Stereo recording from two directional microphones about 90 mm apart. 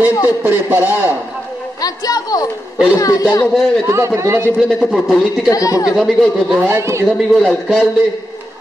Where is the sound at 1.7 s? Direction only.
45° left (ahead or behind).